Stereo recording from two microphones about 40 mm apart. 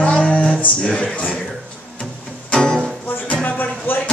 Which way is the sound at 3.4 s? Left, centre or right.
Left.